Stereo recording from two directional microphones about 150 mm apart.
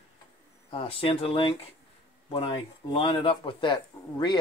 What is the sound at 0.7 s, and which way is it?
Speech, 40° left (ahead or behind).